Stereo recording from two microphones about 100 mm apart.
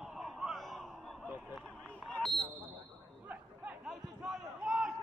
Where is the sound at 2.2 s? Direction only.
Centre (ahead or behind).